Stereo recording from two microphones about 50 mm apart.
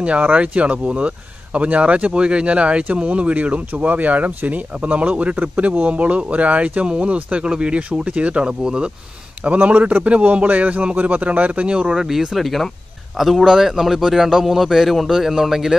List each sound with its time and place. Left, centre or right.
0.0 s a man's voice: right
11.9 s a man's voice: centre
12.4 s a man's voice: centre